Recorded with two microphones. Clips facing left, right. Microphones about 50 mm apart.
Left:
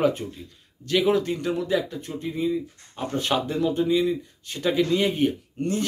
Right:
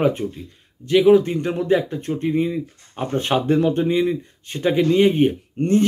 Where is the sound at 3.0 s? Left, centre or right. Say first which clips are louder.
Right 5 dB; right.